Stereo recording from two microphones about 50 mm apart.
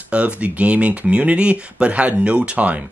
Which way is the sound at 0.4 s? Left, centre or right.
Right.